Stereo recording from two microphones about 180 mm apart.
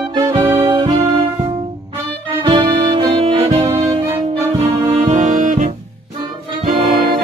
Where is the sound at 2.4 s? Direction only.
25° right (ahead or behind); by 5.7 s 45° right (ahead or behind).